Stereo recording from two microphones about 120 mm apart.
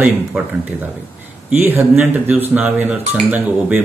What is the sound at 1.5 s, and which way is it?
Speech, 15° right (ahead or behind).